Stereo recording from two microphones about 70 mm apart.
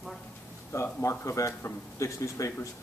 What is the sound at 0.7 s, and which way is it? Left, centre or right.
A man's voice, left.